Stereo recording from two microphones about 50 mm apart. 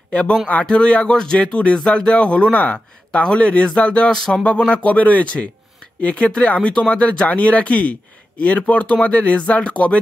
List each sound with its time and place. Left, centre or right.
0.1 s speech: left